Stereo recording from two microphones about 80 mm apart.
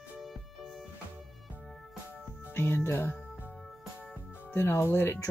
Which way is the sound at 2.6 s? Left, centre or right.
Left.